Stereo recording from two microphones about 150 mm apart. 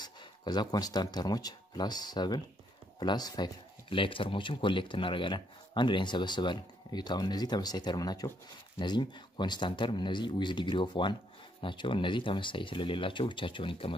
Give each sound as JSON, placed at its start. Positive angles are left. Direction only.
{"t": 0.0, "sound": "speech", "side_deg": 30}